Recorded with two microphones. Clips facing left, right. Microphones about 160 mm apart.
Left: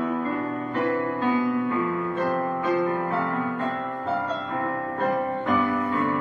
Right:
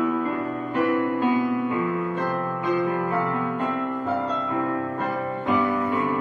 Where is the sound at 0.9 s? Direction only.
15° right (ahead or behind).